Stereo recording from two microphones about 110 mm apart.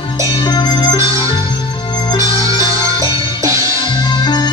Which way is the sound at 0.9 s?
25° right (ahead or behind).